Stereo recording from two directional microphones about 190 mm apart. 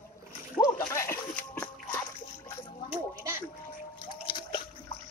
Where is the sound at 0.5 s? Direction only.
15° left (ahead or behind).